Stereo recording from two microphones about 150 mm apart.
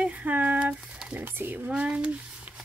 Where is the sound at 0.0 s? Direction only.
10° right (ahead or behind).